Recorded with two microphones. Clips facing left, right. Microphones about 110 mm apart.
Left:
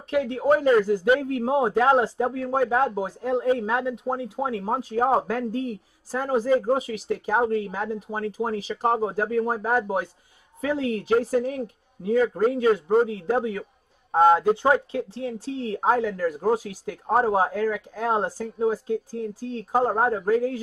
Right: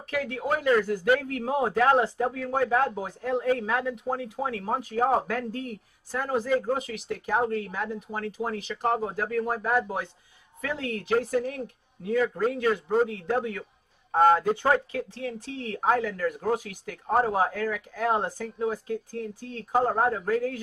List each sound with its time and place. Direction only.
0.1 s speech: 30° left (ahead or behind)
1.0 s speech: 25° left (ahead or behind)
6.5 s speech: 25° left (ahead or behind)
7.4 s speech: 20° left (ahead or behind)
7.7 s speech: 35° left (ahead or behind)
14.1 s a man's voice: 15° left (ahead or behind)
14.5 s speech: 25° left (ahead or behind)